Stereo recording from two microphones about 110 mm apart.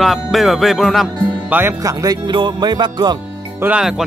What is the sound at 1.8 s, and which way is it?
Speech, 30° right (ahead or behind).